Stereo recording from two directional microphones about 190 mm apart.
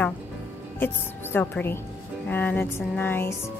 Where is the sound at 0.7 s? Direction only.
10° left (ahead or behind).